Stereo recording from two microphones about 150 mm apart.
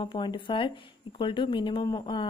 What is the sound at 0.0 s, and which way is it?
Speech, 30° left (ahead or behind).